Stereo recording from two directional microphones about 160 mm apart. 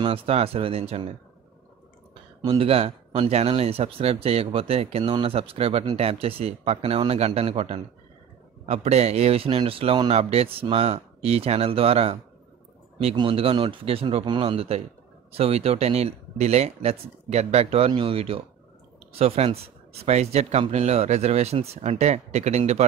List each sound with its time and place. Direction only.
0.0 s speech: 35° right (ahead or behind)
2.4 s speech: 35° right (ahead or behind)